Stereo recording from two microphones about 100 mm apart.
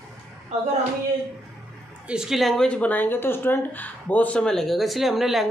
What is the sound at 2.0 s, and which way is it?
Speech, 5° right (ahead or behind).